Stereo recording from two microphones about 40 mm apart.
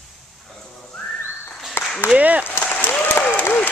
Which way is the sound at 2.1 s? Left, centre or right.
Right.